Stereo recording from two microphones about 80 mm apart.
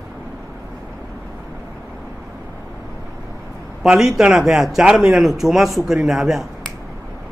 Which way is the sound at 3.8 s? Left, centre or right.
Centre.